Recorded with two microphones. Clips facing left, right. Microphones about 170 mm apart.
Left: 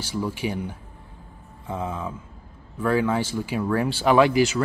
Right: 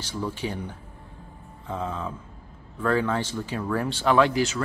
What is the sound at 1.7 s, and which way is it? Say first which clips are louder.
Speech: left 1 dB; 10° left (ahead or behind).